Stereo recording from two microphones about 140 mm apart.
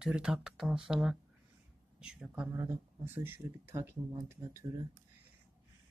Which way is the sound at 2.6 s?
20° right (ahead or behind).